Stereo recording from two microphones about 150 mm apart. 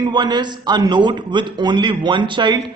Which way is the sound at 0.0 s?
30° right (ahead or behind).